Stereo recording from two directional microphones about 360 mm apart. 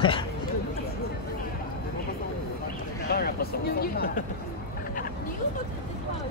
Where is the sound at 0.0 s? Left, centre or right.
Centre.